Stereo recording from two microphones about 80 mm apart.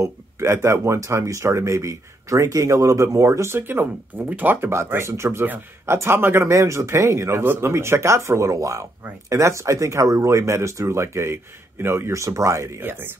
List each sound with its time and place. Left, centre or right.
0.0 s speech: right